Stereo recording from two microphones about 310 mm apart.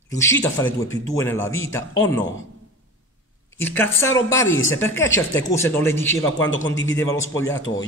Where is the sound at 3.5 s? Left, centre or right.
Centre.